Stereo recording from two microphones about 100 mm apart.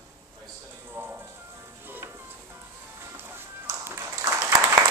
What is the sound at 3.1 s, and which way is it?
Music, 25° right (ahead or behind).